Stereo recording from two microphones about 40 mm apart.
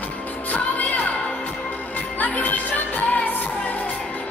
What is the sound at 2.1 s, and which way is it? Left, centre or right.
Music, left.